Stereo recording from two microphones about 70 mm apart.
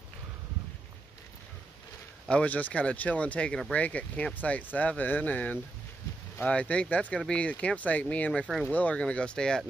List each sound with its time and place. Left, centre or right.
2.2 s speech: centre